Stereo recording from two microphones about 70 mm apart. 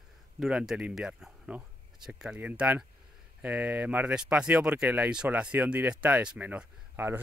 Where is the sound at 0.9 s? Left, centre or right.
Centre.